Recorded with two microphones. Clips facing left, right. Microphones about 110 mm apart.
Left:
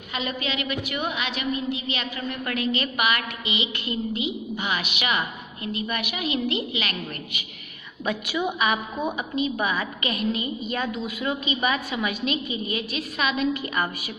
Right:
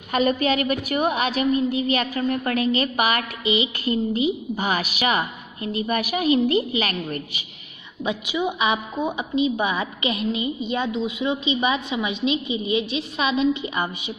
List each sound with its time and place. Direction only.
0.1 s a woman's voice: 45° right (ahead or behind)
8.0 s a woman's voice: 20° right (ahead or behind)